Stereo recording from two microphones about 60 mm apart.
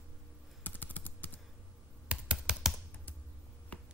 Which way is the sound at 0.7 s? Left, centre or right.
Left.